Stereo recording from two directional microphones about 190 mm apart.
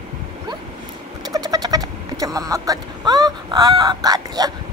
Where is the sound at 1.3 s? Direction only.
20° right (ahead or behind).